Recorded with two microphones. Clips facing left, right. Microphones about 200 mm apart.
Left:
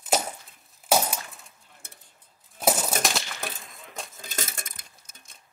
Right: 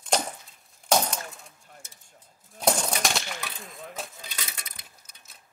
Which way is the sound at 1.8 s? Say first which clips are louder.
Left 4 dB; 55° left (ahead or behind).